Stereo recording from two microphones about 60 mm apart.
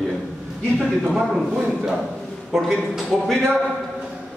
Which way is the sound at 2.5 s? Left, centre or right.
Centre.